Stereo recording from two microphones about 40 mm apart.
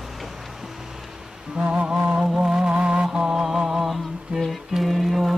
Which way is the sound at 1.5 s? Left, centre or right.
Right.